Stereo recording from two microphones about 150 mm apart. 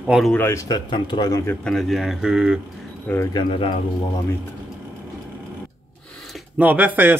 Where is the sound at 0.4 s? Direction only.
15° left (ahead or behind).